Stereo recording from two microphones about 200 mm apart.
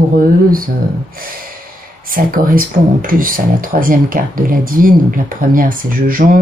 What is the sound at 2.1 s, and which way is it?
Speech, 45° right (ahead or behind).